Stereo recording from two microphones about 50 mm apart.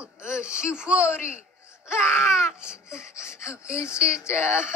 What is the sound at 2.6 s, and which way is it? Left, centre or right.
Speech, centre.